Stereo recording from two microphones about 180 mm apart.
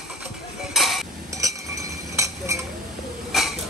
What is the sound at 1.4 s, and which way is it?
Chink, 15° right (ahead or behind).